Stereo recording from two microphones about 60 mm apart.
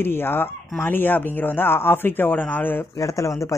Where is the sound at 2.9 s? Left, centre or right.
Left.